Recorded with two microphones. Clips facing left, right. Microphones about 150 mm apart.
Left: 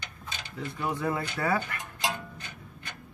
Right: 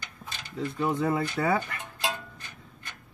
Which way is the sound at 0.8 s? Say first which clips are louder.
Right 4 dB; 25° right (ahead or behind).